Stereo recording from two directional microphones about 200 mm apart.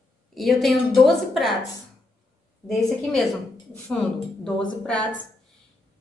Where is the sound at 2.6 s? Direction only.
Centre (ahead or behind).